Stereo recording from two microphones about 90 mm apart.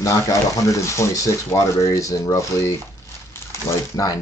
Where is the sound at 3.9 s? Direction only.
45° left (ahead or behind).